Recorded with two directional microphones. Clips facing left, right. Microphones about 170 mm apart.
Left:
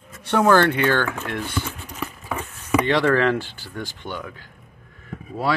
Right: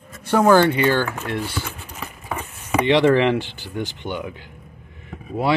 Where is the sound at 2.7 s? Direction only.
15° right (ahead or behind).